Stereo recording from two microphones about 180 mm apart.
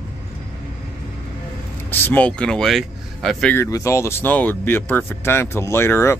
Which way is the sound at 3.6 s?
15° left (ahead or behind).